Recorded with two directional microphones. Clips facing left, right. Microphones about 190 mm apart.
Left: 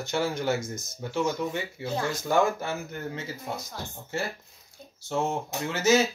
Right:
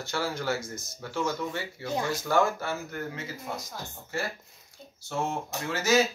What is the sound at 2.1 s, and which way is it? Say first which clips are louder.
Speech: left 1 dB; 15° left (ahead or behind).